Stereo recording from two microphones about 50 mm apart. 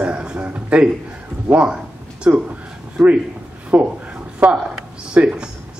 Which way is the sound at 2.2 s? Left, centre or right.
Right.